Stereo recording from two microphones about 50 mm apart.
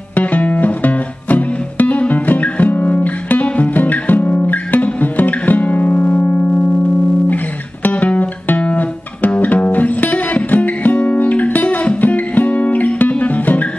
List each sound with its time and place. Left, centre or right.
0.1 s music: left
7.8 s music: left